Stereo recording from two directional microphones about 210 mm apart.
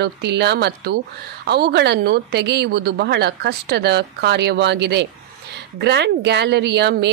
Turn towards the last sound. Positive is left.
turn(degrees=-50)  # may be behind; listen again after turning